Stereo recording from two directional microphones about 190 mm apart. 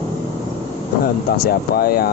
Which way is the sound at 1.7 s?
55° left (ahead or behind).